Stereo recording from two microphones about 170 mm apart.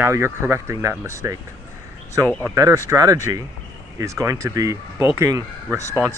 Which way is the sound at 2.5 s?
20° right (ahead or behind).